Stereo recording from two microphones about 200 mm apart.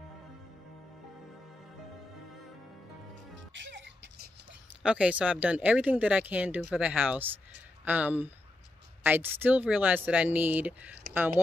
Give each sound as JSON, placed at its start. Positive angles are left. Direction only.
{"t": 3.5, "sound": "speech", "side_deg": -65}
{"t": 4.8, "sound": "speech", "side_deg": -5}